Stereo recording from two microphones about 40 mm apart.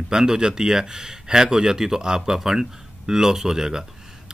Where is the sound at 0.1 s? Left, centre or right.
Centre.